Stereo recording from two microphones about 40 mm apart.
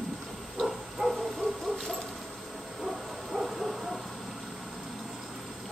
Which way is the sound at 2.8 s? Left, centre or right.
Centre.